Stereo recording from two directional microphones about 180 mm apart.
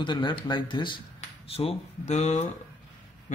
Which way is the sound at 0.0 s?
25° left (ahead or behind).